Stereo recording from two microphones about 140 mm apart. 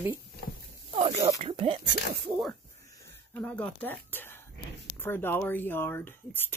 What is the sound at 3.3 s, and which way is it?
Speech, 10° left (ahead or behind).